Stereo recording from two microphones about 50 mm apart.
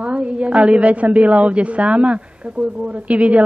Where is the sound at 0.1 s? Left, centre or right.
Right.